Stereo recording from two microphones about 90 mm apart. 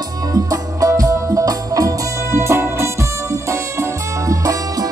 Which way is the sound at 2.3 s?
30° right (ahead or behind).